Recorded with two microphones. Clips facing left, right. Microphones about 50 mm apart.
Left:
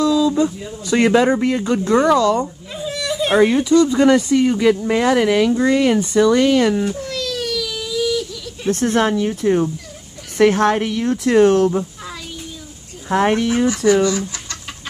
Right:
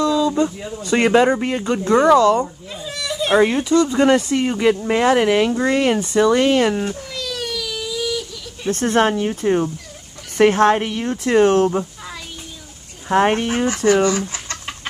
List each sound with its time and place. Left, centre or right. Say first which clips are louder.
0.0 s a sound: left 2 dB; right
0.4 s speech: left 1 dB; right
2.7 s a sound: left 4 dB; centre
3.6 s speech: left 2 dB; right
5.7 s speech: left 2 dB; right
6.9 s baby cry: left 4 dB; centre
8.7 s speech: right 1 dB; right
13.1 s speech: even; right
13.7 s speech: even; right
14.0 s chicken: even; right